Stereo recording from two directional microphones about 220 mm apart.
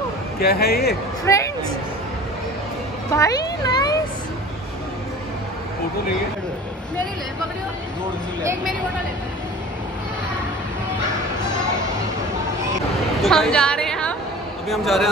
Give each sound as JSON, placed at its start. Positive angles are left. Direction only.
{"t": 0.4, "sound": "speech", "side_deg": 45}
{"t": 1.2, "sound": "a sound", "side_deg": 15}
{"t": 3.1, "sound": "children playing", "side_deg": 15}
{"t": 13.2, "sound": "a woman's voice", "side_deg": 0}